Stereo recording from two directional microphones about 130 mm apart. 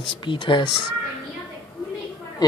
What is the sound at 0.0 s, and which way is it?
Speech, 35° left (ahead or behind).